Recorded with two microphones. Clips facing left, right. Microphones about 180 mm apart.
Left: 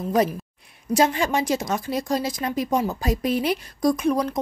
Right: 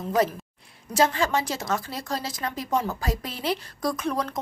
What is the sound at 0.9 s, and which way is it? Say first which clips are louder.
Speech: left 2 dB; 15° left (ahead or behind).